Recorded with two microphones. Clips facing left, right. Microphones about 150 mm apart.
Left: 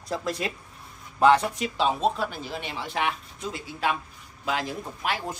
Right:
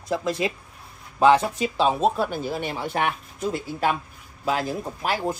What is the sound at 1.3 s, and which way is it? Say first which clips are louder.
Speech: right 3 dB; 35° right (ahead or behind).